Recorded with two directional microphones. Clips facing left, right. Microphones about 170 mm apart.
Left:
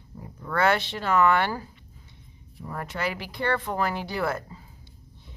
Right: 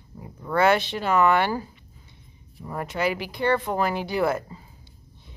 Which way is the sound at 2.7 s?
15° right (ahead or behind).